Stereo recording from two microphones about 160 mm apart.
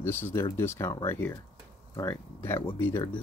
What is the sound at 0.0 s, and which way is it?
Speech, 15° left (ahead or behind).